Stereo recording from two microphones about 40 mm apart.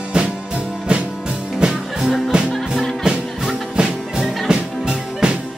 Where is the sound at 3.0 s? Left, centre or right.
Right.